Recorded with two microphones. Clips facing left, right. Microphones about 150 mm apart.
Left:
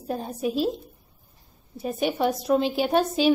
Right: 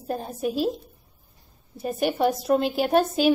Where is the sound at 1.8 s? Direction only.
Centre (ahead or behind).